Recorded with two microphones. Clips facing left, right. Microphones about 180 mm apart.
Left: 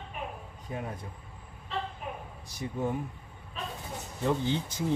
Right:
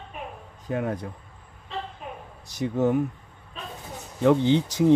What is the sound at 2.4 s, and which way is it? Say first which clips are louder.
Speech: right 9 dB; 80° right.